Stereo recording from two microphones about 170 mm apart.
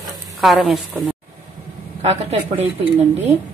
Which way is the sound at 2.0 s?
40° right (ahead or behind).